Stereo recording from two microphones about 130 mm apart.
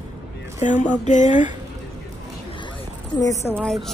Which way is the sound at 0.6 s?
70° left (ahead or behind).